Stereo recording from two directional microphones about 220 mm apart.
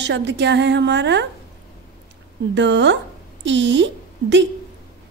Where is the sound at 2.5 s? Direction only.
55° right (ahead or behind).